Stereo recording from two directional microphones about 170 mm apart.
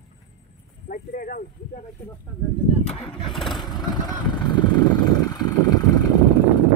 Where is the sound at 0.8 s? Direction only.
55° left (ahead or behind).